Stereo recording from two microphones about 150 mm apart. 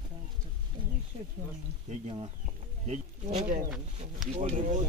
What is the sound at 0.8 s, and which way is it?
Speech, 35° right (ahead or behind).